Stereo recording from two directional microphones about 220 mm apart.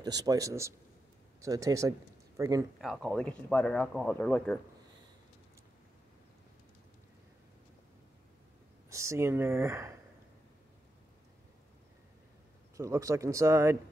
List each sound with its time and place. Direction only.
0.0 s speech: 15° right (ahead or behind)
2.8 s speech: centre (ahead or behind)
8.9 s speech: 15° right (ahead or behind)
12.7 s speech: 15° right (ahead or behind)